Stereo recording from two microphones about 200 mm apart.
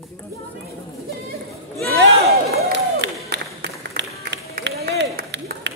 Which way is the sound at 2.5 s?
55° right (ahead or behind).